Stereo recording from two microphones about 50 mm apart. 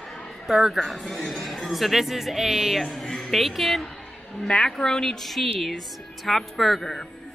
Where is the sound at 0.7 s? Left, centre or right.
Centre.